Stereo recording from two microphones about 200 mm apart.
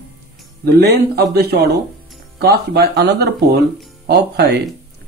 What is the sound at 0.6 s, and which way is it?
Speech, 55° right (ahead or behind).